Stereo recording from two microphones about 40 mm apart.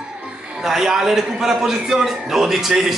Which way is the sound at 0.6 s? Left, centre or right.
Centre.